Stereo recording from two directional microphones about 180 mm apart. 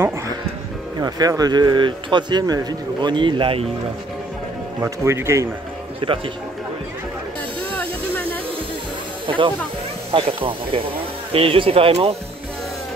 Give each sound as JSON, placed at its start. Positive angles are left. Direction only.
{"t": 1.0, "sound": "a man's voice", "side_deg": -20}
{"t": 4.8, "sound": "speech", "side_deg": -15}
{"t": 5.9, "sound": "speech", "side_deg": -30}
{"t": 7.7, "sound": "a sound", "side_deg": 10}
{"t": 10.1, "sound": "speech", "side_deg": -30}